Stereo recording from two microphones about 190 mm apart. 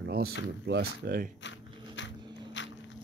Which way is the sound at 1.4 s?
70° left (ahead or behind).